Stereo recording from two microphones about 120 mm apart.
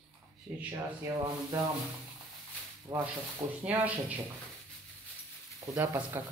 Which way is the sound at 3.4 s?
60° right (ahead or behind).